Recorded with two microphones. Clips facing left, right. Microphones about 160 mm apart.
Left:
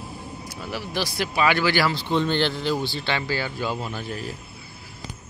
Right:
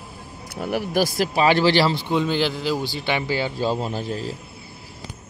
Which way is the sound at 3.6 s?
35° right (ahead or behind).